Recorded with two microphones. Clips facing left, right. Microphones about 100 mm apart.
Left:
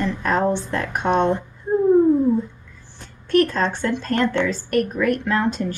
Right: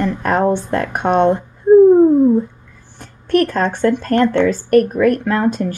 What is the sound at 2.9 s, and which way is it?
Speech, 50° right (ahead or behind).